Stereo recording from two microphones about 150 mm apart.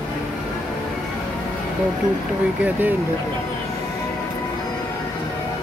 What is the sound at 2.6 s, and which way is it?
Speech, 10° right (ahead or behind).